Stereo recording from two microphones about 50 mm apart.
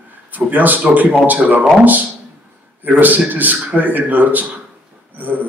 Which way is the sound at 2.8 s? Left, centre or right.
Right.